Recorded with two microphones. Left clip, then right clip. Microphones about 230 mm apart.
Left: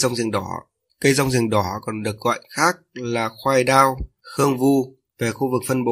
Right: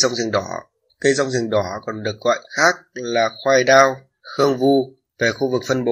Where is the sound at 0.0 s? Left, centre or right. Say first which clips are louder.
Right 3 dB; left.